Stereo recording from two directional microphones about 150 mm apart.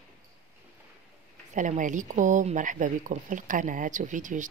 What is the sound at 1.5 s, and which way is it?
Speech, 55° right (ahead or behind).